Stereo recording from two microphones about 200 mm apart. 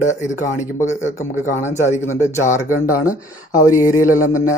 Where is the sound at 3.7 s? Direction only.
15° left (ahead or behind).